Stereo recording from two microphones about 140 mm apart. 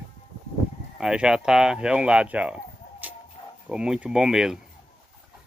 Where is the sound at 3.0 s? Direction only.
10° right (ahead or behind).